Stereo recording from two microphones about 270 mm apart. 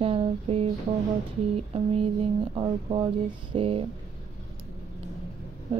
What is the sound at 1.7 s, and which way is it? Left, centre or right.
Speech, right.